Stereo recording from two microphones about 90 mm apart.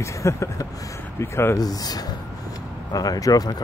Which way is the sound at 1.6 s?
45° left (ahead or behind).